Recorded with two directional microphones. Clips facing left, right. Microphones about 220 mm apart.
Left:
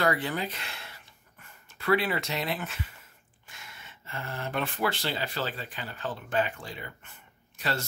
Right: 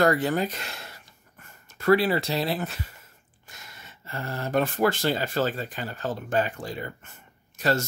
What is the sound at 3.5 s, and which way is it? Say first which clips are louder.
Speech: right 2 dB; 40° right (ahead or behind).